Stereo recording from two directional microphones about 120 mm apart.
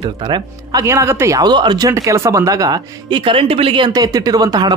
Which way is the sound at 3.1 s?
45° right (ahead or behind).